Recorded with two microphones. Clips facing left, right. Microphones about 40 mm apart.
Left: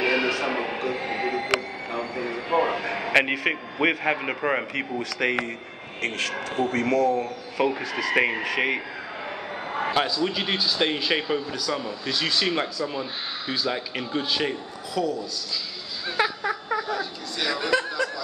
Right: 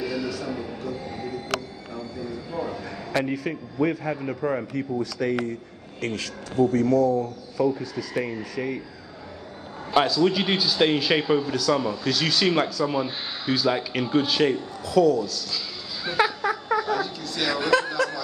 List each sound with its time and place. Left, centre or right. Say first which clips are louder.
0.0 s music: left 6 dB; left
2.0 s a man's voice: left 4 dB; left
5.9 s a man's voice: left 3 dB; left
10.0 s a man's voice: right 4 dB; centre
16.1 s a sound: right 2 dB; centre